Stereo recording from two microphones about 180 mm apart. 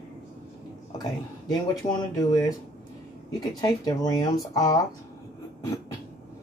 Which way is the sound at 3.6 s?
20° left (ahead or behind).